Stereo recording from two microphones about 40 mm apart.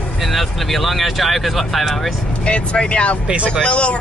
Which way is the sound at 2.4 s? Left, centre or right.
Left.